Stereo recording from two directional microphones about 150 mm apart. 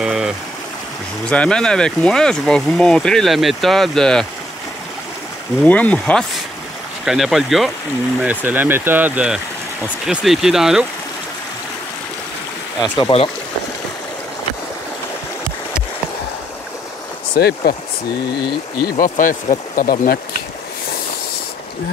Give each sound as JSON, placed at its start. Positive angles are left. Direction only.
{"t": 0.0, "sound": "stream", "side_deg": -5}
{"t": 1.2, "sound": "speech", "side_deg": 5}
{"t": 5.7, "sound": "speech", "side_deg": 10}
{"t": 7.1, "sound": "speech", "side_deg": 0}
{"t": 13.0, "sound": "speech", "side_deg": 40}
{"t": 17.4, "sound": "speech", "side_deg": 90}
{"t": 18.8, "sound": "speech", "side_deg": 80}